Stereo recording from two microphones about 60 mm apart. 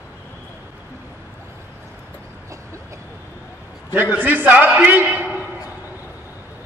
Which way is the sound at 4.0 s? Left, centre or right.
Right.